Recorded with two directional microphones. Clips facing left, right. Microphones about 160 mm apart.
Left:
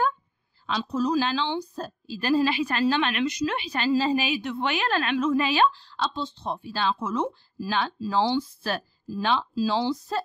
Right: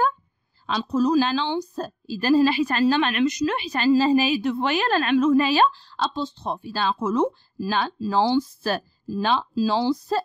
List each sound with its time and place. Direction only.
0.7 s a woman's voice: 40° right (ahead or behind)